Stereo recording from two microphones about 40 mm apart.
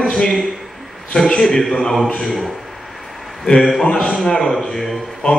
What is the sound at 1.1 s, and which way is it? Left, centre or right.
Speech, centre.